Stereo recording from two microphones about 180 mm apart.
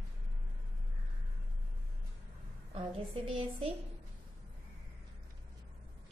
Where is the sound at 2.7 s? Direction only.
30° right (ahead or behind).